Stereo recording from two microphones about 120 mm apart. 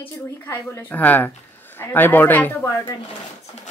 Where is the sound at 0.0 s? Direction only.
15° left (ahead or behind).